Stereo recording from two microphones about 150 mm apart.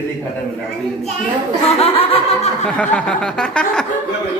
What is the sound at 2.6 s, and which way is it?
A man's voice, 10° left (ahead or behind).